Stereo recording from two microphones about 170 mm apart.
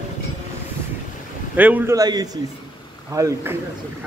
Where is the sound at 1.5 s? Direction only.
10° right (ahead or behind).